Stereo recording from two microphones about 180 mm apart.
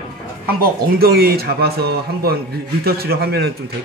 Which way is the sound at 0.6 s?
55° right (ahead or behind).